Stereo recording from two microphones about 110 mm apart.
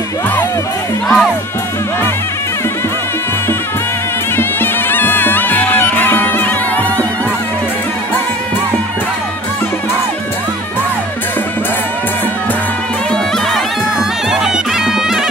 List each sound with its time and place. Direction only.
1.0 s music: centre (ahead or behind)
4.4 s bagpipes: 20° left (ahead or behind)
13.1 s bagpipes: centre (ahead or behind)